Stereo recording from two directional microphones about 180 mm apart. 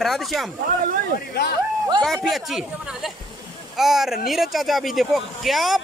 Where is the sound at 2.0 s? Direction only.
Centre (ahead or behind).